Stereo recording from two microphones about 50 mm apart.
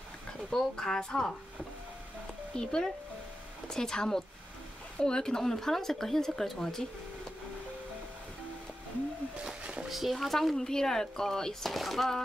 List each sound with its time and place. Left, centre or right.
0.5 s speech: centre
2.5 s speech: centre
9.4 s speech: right
9.8 s speech: centre